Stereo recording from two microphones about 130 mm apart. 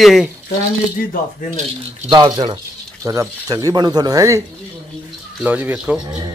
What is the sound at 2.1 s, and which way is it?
Speech, 30° right (ahead or behind).